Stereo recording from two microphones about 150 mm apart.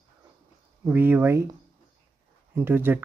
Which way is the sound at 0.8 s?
15° right (ahead or behind).